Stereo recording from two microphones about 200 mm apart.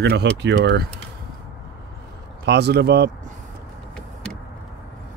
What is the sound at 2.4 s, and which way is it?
Speech, 55° right (ahead or behind).